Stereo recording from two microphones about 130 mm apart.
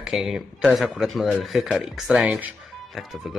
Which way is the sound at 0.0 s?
Centre (ahead or behind).